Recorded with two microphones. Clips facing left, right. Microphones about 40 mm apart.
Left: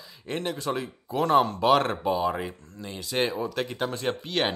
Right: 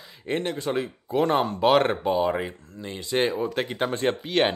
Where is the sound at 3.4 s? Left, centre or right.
Right.